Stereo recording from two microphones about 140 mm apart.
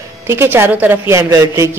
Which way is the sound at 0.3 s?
15° right (ahead or behind).